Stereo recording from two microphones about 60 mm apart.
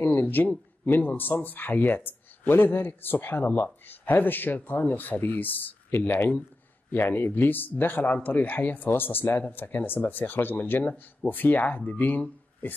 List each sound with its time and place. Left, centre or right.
0.0 s a man's voice: left